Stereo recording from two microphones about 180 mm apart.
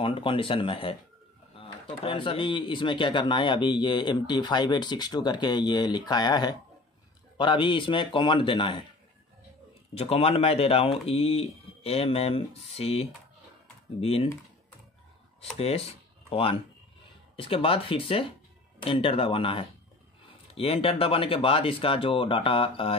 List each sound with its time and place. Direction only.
0.0 s speech: 30° left (ahead or behind)
9.9 s speech: 35° left (ahead or behind)
15.5 s speech: 35° left (ahead or behind)